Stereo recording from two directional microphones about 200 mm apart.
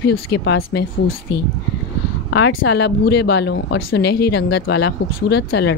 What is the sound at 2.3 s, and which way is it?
Speech, 70° left (ahead or behind).